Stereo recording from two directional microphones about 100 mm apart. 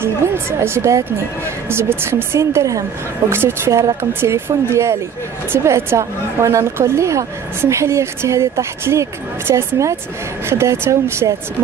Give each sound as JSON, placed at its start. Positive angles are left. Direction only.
{"t": 0.0, "sound": "a woman's voice", "side_deg": -25}